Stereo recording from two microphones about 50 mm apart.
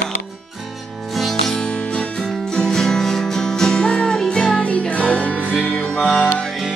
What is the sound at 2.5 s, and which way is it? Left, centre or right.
Music, centre.